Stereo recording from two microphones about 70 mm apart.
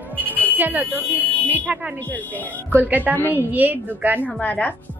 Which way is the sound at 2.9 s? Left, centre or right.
Right.